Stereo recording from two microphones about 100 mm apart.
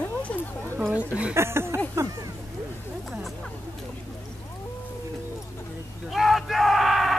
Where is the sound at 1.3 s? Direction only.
25° right (ahead or behind).